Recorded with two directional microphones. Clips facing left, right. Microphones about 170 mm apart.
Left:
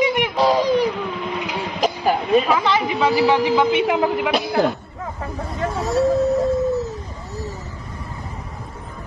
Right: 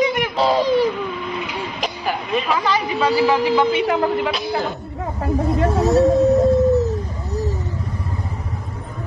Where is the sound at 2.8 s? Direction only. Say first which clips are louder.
Right 1 dB; 15° left (ahead or behind).